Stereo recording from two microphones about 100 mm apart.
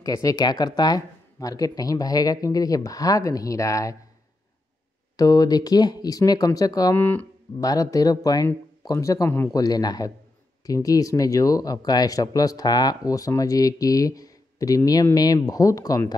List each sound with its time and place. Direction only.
0.0 s speech: 35° left (ahead or behind)
5.1 s speech: 40° left (ahead or behind)
7.0 s speech: 20° left (ahead or behind)
7.6 s speech: 35° left (ahead or behind)